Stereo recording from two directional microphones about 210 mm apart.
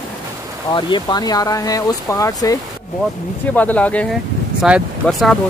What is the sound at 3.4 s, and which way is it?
Speech, 10° left (ahead or behind).